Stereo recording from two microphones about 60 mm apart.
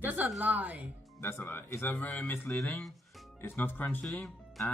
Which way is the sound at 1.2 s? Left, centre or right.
Left.